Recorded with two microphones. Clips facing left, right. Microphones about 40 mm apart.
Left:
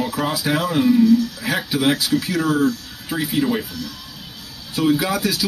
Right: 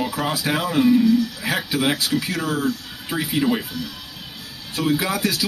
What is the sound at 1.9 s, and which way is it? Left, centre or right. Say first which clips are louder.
Speech: left 3 dB; centre.